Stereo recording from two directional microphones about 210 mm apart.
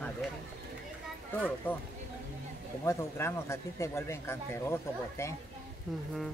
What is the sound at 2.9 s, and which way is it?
Speech, 15° left (ahead or behind).